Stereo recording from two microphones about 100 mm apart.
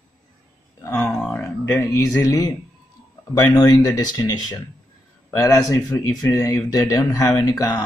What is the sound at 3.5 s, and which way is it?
Speech, 40° left (ahead or behind).